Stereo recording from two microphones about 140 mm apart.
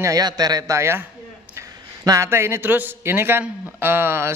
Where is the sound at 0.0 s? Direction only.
25° right (ahead or behind).